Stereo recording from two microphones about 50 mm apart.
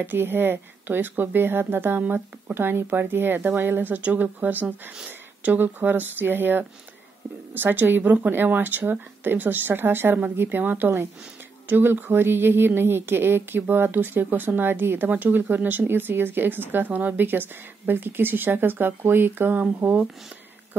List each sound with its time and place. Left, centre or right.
0.0 s speech: right
10.6 s speech: right